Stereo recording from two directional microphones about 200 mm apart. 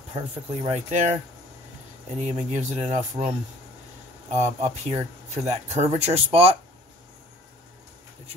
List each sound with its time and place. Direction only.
0.1 s speech: 30° right (ahead or behind)
2.1 s speech: 35° right (ahead or behind)
4.3 s speech: 35° right (ahead or behind)